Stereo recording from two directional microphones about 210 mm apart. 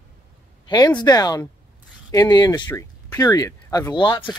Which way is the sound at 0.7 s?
20° left (ahead or behind).